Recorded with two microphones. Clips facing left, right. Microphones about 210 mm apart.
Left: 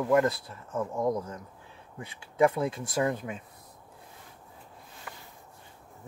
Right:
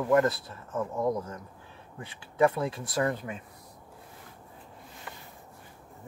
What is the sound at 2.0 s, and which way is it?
Speech, 15° left (ahead or behind).